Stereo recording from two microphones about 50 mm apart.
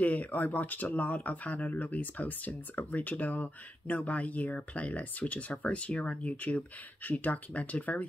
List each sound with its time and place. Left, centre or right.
0.0 s speech: left